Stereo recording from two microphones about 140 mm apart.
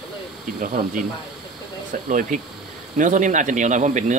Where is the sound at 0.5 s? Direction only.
70° right (ahead or behind).